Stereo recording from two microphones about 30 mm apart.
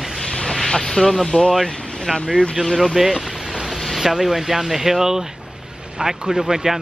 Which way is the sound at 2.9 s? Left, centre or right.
Centre.